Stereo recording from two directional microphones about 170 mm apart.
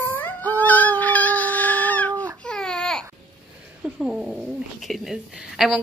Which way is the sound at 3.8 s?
5° right (ahead or behind).